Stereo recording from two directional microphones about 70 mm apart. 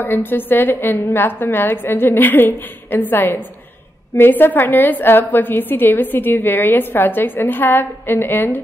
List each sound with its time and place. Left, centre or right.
0.0 s a woman's voice: left